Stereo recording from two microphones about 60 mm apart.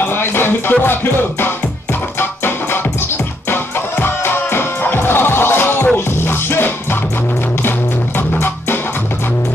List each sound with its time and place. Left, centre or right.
0.0 s music: left
2.1 s music: left
4.0 s music: left